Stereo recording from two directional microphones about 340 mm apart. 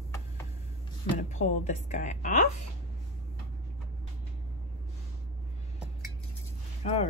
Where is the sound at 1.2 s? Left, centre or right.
Left.